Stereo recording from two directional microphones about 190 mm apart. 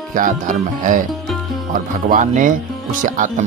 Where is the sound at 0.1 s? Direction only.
45° right (ahead or behind).